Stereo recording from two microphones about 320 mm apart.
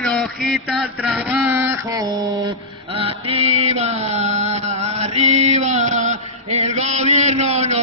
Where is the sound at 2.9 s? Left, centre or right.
Centre.